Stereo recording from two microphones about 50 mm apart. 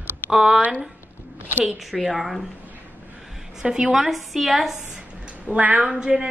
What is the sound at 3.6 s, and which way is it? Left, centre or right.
A woman's voice, centre.